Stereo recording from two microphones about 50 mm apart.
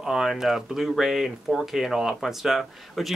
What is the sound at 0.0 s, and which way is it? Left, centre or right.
Speech, centre.